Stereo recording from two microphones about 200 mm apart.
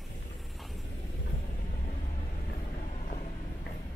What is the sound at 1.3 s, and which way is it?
Vehicle, 35° left (ahead or behind).